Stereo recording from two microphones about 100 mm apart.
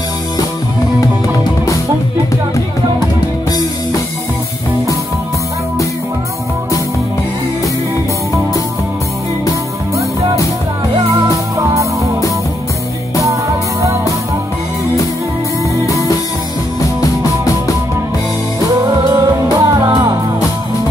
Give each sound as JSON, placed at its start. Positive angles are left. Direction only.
{"t": 1.0, "sound": "music", "side_deg": 35}
{"t": 11.5, "sound": "music", "side_deg": -35}
{"t": 18.8, "sound": "music", "side_deg": -35}